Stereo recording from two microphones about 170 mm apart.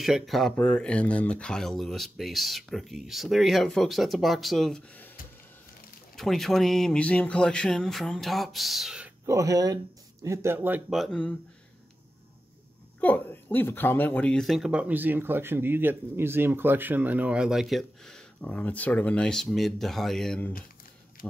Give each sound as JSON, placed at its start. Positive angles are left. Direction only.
{"t": 0.0, "sound": "speech", "side_deg": 0}
{"t": 6.1, "sound": "speech", "side_deg": 0}
{"t": 9.2, "sound": "speech", "side_deg": -20}
{"t": 10.9, "sound": "speech", "side_deg": 0}
{"t": 13.0, "sound": "speech", "side_deg": 10}